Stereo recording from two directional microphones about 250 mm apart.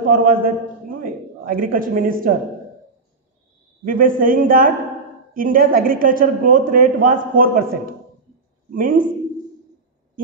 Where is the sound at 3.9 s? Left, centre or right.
Right.